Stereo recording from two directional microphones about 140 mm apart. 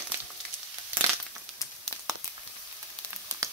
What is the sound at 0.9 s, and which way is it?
Crumpling, 10° right (ahead or behind).